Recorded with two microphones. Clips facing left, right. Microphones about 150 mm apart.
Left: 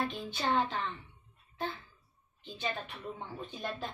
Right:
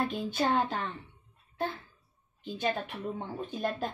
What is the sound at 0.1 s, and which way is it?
Speech, 50° right (ahead or behind).